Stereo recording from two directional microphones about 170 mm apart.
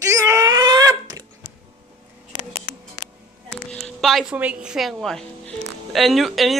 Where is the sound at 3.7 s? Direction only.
Centre (ahead or behind).